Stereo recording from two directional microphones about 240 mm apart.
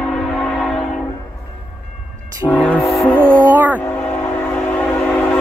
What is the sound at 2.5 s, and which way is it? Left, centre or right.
Train, centre.